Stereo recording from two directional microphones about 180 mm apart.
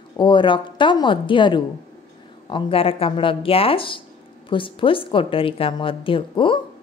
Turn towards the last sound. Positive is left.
turn(degrees=30)  # may be behind; listen again after turning